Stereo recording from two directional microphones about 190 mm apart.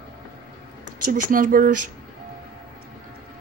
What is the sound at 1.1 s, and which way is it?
Speech, 45° right (ahead or behind).